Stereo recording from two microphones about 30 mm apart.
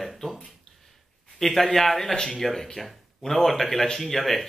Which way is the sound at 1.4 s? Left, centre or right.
Centre.